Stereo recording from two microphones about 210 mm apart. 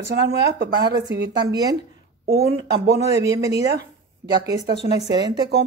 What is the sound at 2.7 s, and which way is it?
Speech, 50° right (ahead or behind).